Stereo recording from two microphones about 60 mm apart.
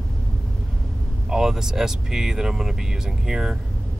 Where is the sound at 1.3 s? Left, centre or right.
Centre.